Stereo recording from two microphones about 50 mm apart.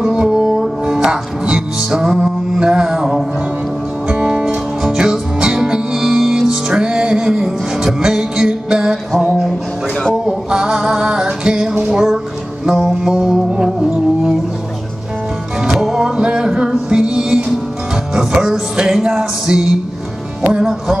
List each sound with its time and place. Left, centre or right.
0.0 s music: centre
10.2 s music: centre
15.6 s music: centre